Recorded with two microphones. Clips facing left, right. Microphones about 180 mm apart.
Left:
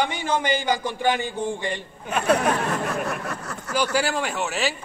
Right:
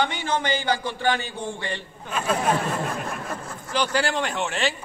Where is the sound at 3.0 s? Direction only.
70° left (ahead or behind).